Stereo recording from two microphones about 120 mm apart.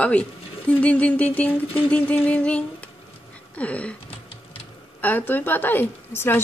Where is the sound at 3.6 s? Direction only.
10° left (ahead or behind).